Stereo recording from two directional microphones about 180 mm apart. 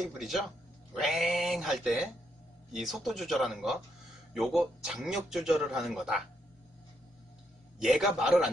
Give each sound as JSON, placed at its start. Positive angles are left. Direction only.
{"t": 0.0, "sound": "speech", "side_deg": 0}
{"t": 7.8, "sound": "speech", "side_deg": -5}